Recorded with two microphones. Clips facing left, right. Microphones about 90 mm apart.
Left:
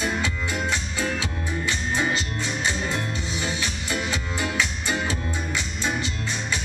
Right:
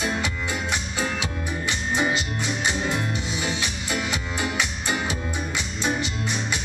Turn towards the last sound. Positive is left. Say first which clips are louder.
# right 1 dB
turn(degrees=-20)  # may be behind; listen again after turning